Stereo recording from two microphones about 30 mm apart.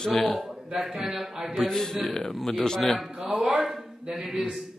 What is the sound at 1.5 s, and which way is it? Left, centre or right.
A man's voice, centre.